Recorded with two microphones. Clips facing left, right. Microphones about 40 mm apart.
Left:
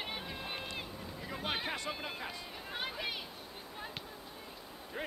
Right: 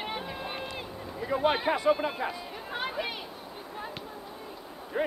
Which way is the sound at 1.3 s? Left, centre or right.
Centre.